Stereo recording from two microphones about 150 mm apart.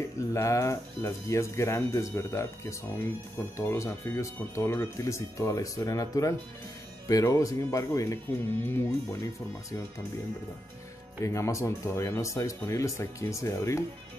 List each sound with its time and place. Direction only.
0.3 s speech: 20° left (ahead or behind)
11.1 s speech: 20° left (ahead or behind)